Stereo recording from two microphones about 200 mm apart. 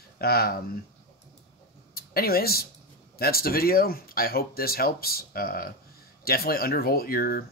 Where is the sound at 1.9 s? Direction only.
50° left (ahead or behind).